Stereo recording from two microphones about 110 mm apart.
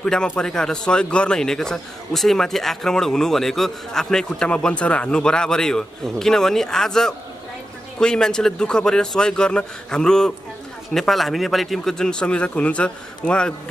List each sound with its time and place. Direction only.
0.0 s a man's voice: 10° left (ahead or behind)